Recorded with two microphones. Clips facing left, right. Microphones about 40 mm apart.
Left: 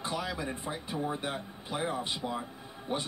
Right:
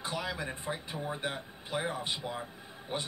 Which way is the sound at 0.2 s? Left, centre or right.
Centre.